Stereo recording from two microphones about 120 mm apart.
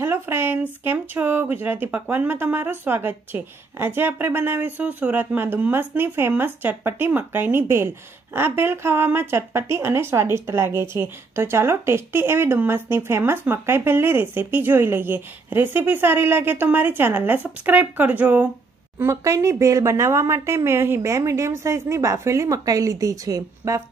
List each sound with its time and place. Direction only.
0.0 s speech: 20° right (ahead or behind)
18.9 s speech: 25° right (ahead or behind)